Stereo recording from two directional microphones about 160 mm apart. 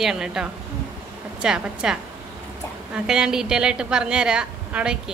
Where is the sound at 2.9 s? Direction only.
5° right (ahead or behind).